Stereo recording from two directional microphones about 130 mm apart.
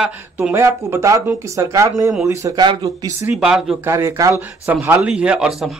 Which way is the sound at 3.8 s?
20° right (ahead or behind).